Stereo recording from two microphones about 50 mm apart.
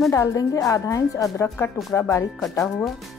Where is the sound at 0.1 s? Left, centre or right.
Left.